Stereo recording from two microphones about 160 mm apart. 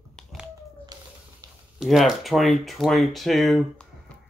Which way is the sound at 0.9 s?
25° right (ahead or behind).